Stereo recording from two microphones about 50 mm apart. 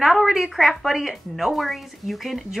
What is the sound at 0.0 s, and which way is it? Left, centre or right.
Speech, centre.